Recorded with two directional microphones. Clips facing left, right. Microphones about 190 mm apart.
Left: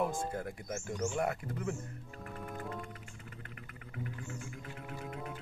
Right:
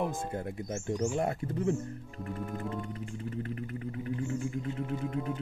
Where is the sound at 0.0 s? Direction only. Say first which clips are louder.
Right 1 dB; 20° right (ahead or behind).